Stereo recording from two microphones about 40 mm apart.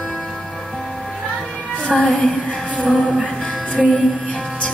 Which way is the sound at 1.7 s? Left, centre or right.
Left.